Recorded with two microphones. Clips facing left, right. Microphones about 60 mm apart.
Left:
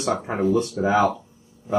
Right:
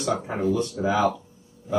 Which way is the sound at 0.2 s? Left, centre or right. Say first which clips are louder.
Left 3 dB; left.